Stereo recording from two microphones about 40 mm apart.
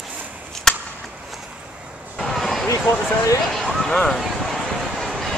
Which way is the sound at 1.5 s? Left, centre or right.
Right.